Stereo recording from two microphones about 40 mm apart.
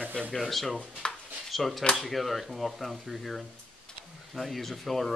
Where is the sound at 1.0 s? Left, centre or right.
Left.